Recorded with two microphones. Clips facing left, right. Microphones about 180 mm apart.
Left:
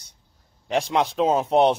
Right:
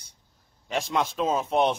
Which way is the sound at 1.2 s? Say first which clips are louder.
Left 6 dB; 65° left (ahead or behind).